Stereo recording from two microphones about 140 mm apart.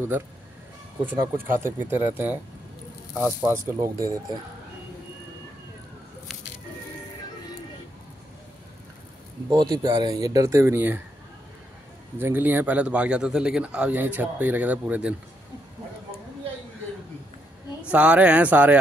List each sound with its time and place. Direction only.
1.0 s speech: 20° right (ahead or behind)
9.5 s speech: 30° right (ahead or behind)
12.2 s speech: 15° right (ahead or behind)
17.8 s speech: 10° right (ahead or behind)